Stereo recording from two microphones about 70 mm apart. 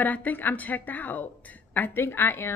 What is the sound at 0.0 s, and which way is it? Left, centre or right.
A woman's voice, left.